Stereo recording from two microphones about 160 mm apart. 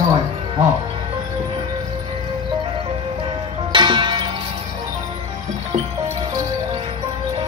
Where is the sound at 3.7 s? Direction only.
30° right (ahead or behind).